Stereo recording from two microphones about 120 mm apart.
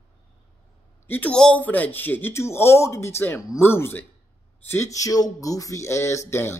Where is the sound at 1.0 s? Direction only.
15° left (ahead or behind).